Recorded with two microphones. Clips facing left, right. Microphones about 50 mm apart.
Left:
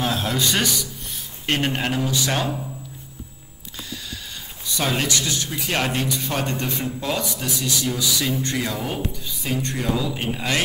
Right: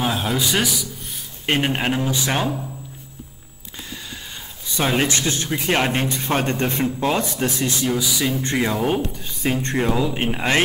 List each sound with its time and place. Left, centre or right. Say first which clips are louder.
0.0 s speech: right 1 dB; centre
1.4 s speech: right 2 dB; centre
4.7 s speech: right 3 dB; right
7.8 s speech: right 3 dB; right
8.8 s speech: right 6 dB; right